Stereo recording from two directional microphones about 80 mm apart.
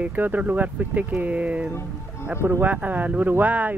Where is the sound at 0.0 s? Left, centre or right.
Right.